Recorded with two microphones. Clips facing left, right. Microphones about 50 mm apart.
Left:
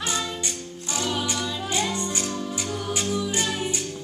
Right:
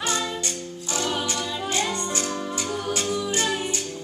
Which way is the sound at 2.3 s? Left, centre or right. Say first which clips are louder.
Right 1 dB; centre.